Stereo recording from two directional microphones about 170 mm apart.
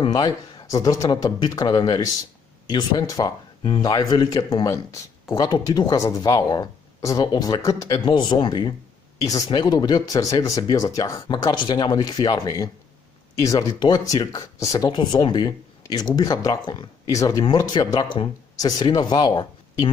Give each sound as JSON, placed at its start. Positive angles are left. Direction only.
{"t": 0.0, "sound": "speech", "side_deg": 25}